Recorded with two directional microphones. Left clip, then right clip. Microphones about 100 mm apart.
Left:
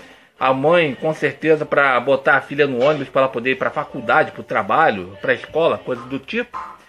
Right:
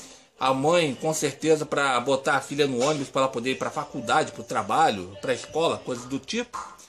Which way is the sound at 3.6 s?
20° right (ahead or behind).